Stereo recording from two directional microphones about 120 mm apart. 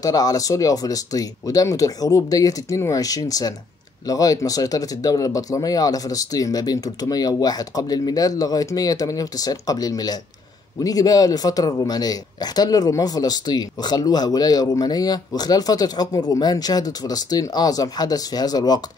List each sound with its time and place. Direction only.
0.0 s speech: 30° left (ahead or behind)